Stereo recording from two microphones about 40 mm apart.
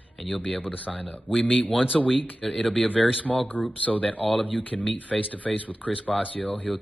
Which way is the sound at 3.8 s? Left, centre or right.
Left.